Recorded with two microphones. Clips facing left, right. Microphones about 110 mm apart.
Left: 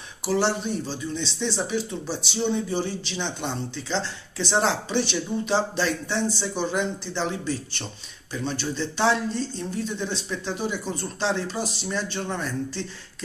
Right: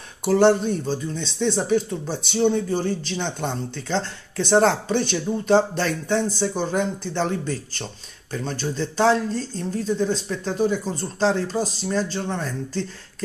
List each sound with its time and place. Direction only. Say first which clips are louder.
0.2 s speech: right 7 dB; 50° right (ahead or behind); by 12.8 s 35° right (ahead or behind)